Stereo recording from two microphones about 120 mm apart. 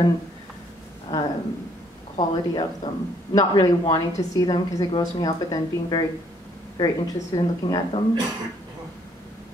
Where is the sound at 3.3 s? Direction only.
35° left (ahead or behind).